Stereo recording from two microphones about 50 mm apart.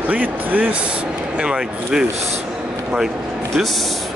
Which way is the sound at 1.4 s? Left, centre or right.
Centre.